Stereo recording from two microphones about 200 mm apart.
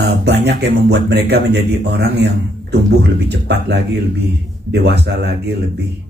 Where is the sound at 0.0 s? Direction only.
55° right (ahead or behind).